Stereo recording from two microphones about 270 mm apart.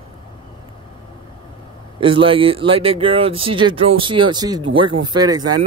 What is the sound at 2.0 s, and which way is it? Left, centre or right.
Speech, centre.